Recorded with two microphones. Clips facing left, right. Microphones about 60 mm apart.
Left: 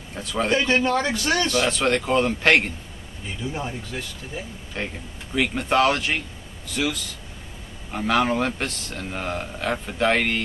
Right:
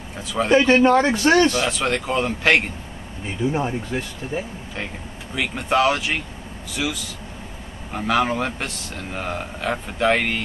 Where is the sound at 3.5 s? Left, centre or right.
Right.